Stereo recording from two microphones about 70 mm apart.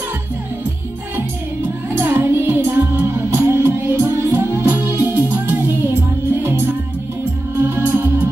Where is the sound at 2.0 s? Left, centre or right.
Right.